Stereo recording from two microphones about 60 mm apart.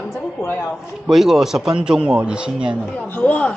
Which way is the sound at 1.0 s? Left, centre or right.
Centre.